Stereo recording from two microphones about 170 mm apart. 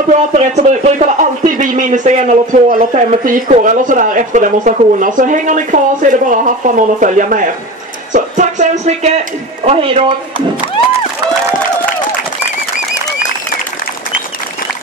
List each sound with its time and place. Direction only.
0.3 s speech: 45° right (ahead or behind)